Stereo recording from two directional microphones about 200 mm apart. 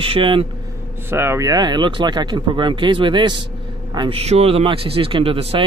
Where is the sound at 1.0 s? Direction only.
10° right (ahead or behind); by 5.6 s 30° right (ahead or behind).